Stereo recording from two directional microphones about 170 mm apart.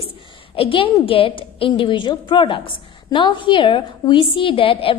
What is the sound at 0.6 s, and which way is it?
A woman's voice, 30° left (ahead or behind).